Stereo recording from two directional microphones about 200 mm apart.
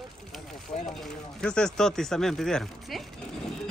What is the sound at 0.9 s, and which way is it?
Speech, centre (ahead or behind).